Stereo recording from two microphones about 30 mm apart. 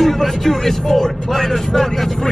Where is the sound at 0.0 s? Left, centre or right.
Centre.